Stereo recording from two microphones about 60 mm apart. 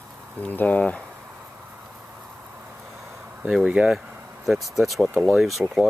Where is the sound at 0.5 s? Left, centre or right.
Left.